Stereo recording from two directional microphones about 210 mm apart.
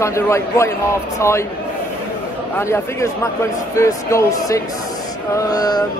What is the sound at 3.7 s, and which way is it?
A man's voice, 15° left (ahead or behind).